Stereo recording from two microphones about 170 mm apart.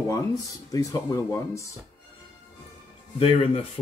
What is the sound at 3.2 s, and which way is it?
Speech, 35° left (ahead or behind).